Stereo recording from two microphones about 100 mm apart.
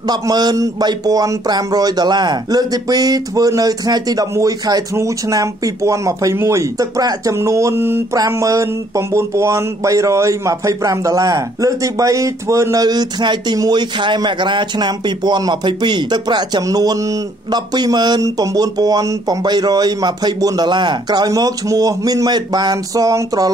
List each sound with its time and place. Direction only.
0.1 s speech: 45° right (ahead or behind)